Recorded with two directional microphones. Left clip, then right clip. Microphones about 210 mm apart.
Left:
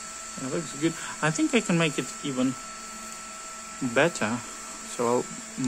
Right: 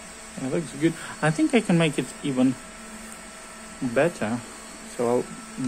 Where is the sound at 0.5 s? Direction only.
5° left (ahead or behind).